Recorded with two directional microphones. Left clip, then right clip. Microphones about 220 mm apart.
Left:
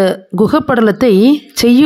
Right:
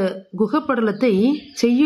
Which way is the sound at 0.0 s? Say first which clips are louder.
Left 9 dB; 45° left (ahead or behind).